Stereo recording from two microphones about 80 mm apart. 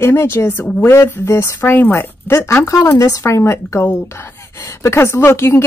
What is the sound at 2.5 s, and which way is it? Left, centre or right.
A woman's voice, left.